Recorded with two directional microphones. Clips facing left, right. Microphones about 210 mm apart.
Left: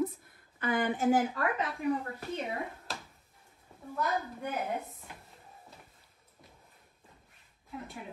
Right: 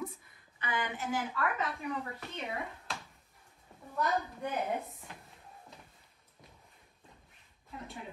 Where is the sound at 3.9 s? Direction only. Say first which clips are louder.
Even; centre (ahead or behind).